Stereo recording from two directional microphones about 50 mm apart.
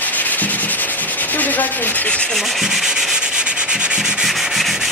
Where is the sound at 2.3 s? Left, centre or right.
Centre.